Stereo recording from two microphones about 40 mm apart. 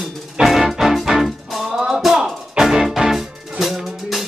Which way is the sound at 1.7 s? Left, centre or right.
Centre.